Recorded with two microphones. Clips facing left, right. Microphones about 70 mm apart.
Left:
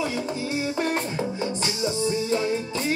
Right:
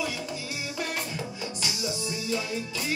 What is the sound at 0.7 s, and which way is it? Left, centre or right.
Music, left.